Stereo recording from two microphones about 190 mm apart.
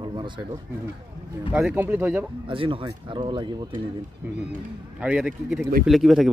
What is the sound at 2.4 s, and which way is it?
Speech, 25° right (ahead or behind).